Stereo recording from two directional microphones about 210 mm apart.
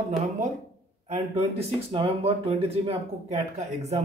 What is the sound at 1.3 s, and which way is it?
Speech, 30° right (ahead or behind).